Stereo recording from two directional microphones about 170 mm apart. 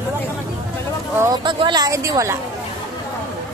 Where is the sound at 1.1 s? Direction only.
25° right (ahead or behind).